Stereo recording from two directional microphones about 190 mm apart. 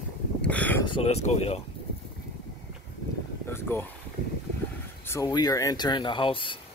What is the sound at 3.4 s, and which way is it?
Speech, 10° left (ahead or behind).